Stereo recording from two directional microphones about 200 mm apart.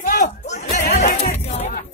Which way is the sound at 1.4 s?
30° left (ahead or behind).